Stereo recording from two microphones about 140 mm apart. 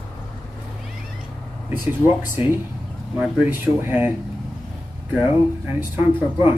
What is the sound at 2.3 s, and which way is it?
Speech, 15° right (ahead or behind).